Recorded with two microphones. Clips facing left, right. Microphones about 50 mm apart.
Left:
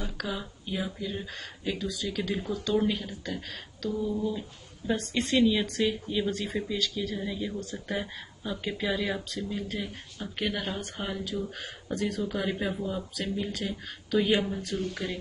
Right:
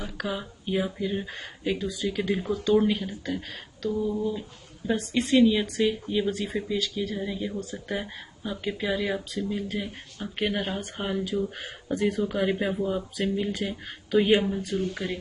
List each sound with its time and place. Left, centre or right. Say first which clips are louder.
0.0 s speech: right 2 dB; centre